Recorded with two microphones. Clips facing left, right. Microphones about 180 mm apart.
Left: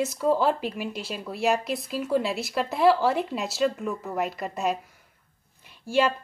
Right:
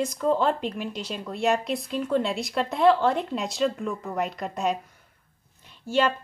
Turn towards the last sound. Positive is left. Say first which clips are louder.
# even
turn(degrees=10)  # may be behind; listen again after turning